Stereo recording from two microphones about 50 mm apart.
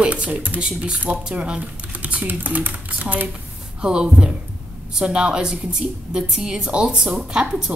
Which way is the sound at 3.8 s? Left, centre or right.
Centre.